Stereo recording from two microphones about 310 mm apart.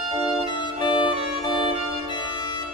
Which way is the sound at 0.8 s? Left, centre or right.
Centre.